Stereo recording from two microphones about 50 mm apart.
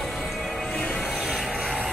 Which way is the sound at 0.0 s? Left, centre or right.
Centre.